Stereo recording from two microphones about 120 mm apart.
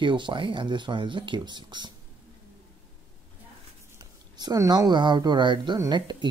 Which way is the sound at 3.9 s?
35° right (ahead or behind).